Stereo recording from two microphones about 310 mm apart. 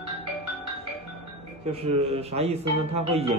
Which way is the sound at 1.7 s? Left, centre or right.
Centre.